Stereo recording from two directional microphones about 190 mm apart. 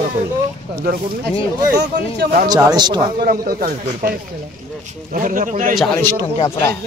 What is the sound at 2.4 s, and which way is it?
Speech, 20° right (ahead or behind).